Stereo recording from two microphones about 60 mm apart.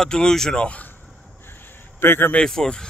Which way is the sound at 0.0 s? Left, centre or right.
Centre.